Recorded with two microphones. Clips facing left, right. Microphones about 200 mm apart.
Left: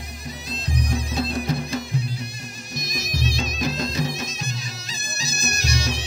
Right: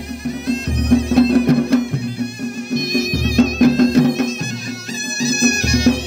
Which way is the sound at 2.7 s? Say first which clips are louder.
Right 13 dB; 55° right (ahead or behind).